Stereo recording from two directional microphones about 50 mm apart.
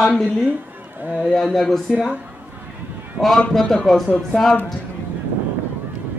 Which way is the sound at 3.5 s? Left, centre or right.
Centre.